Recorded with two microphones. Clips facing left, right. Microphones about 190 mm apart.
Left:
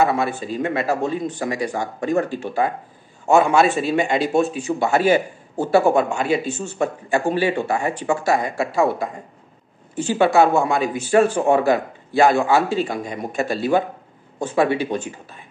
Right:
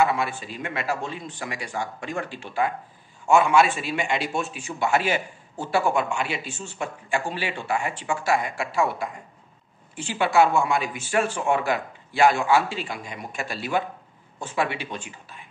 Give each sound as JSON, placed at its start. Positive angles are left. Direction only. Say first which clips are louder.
{"t": 0.0, "sound": "speech", "louder": "left 4 dB", "side_deg": 40}